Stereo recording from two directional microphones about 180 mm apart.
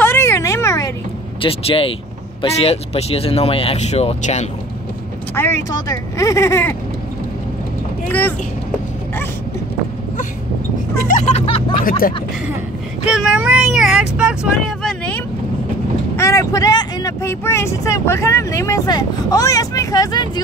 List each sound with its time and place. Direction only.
0.0 s a sound: 15° left (ahead or behind)
1.4 s speech: 30° left (ahead or behind)
5.3 s speech: 15° left (ahead or behind)
8.1 s speech: 10° left (ahead or behind)
11.1 s vehicle: 40° left (ahead or behind)
13.1 s speech: 5° right (ahead or behind)
16.2 s speech: 15° left (ahead or behind)